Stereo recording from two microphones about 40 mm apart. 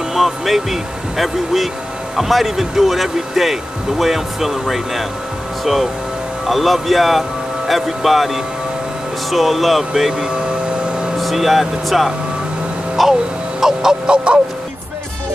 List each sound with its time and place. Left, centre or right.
0.1 s speech: centre
11.1 s speech: centre
13.6 s music: centre
14.0 s a sound: right